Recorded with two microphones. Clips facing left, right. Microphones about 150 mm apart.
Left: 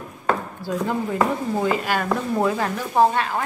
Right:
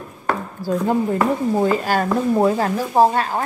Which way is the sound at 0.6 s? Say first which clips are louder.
Right 6 dB; 40° right (ahead or behind).